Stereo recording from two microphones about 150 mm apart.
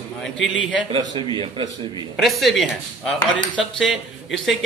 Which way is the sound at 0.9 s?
30° right (ahead or behind).